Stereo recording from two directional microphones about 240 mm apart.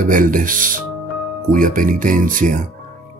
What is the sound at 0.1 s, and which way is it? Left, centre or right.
Speech, right.